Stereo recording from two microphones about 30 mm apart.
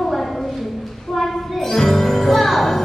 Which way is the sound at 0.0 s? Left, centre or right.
Centre.